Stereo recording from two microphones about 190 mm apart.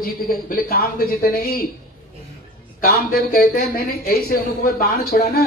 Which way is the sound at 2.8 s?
50° left (ahead or behind).